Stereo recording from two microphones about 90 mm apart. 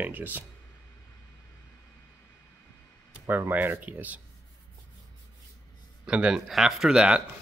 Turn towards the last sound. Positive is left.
turn(degrees=-10)  # may be behind; listen again after turning